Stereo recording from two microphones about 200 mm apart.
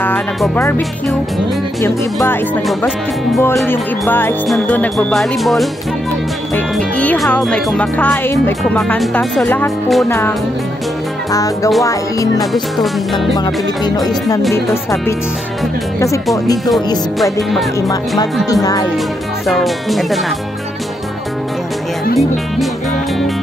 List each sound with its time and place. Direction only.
0.0 s speech: 10° left (ahead or behind)
3.6 s music: 10° left (ahead or behind)
6.5 s speech: 5° left (ahead or behind)
10.0 s music: 10° left (ahead or behind)
11.3 s music: 15° left (ahead or behind)
12.7 s speech: centre (ahead or behind)
13.4 s music: 20° left (ahead or behind)
17.2 s speech: centre (ahead or behind)
17.7 s music: 15° left (ahead or behind)
19.4 s speech: centre (ahead or behind)